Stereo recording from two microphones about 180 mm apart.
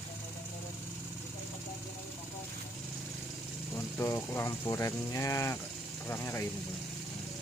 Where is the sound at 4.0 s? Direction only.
15° left (ahead or behind).